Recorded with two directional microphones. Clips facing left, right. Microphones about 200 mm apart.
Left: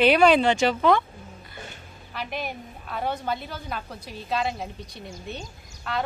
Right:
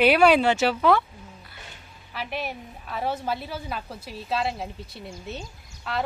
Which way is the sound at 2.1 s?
Centre (ahead or behind).